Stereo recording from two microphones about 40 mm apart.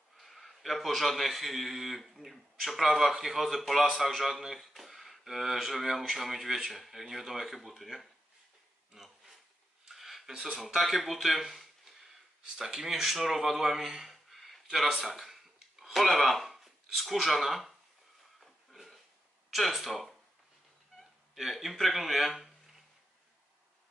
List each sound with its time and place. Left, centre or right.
0.2 s a man's voice: centre
8.9 s a sound: centre
10.8 s speech: centre
14.9 s speech: centre
15.1 s a sound: centre
19.5 s a man's voice: centre
21.0 s cat: centre